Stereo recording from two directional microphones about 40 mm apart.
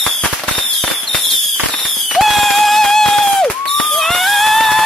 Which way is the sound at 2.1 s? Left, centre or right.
Centre.